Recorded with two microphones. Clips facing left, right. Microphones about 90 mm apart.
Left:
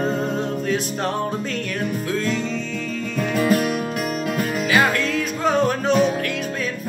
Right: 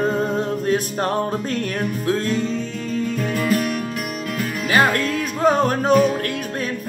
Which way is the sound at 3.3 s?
20° left (ahead or behind).